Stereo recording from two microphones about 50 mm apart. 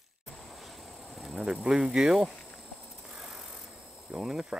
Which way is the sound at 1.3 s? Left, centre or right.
Centre.